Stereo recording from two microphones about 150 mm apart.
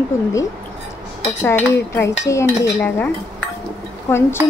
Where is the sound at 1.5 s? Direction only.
15° left (ahead or behind).